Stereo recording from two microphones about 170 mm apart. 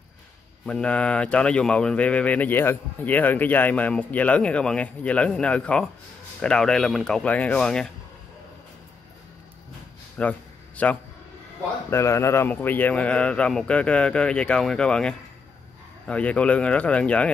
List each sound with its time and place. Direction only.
0.7 s speech: 5° left (ahead or behind)
10.2 s speech: 5° left (ahead or behind)